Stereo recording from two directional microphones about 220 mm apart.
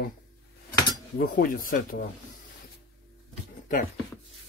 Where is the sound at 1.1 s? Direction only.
40° left (ahead or behind).